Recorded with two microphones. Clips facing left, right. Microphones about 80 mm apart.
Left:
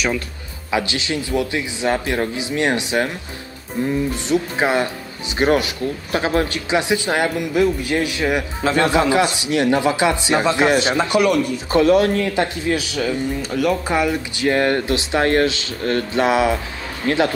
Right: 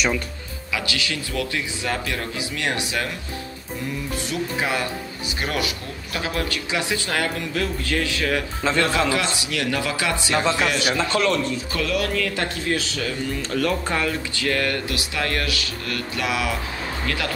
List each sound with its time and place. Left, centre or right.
0.7 s speech: left
4.1 s speech: left